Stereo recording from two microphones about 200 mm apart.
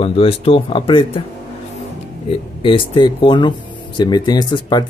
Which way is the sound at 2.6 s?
25° left (ahead or behind).